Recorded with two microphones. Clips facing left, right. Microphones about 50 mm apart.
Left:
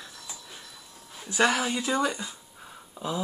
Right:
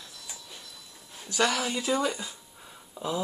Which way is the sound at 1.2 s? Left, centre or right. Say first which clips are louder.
Left 3 dB; centre.